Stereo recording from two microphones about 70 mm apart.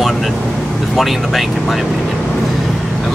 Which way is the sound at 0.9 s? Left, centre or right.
Centre.